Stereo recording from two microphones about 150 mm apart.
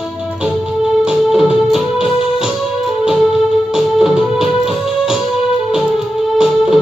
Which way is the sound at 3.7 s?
5° right (ahead or behind).